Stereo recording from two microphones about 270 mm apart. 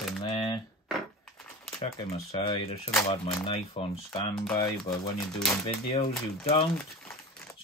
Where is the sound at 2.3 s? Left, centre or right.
Left.